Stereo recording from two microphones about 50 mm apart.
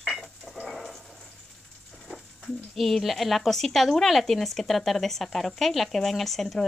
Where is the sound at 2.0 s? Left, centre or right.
Centre.